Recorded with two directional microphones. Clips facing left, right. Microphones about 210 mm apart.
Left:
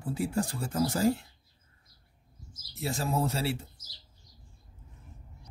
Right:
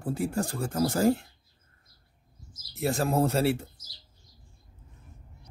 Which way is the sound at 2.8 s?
55° right (ahead or behind).